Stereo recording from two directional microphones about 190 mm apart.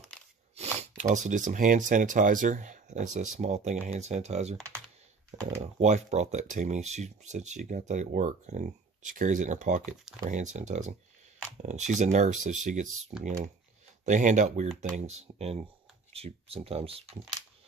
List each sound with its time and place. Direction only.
0.6 s speech: 40° right (ahead or behind)
5.6 s speech: 35° right (ahead or behind)